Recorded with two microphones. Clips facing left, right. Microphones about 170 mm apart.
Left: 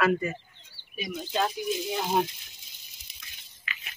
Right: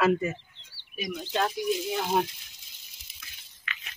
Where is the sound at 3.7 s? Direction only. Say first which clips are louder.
Even; 5° left (ahead or behind).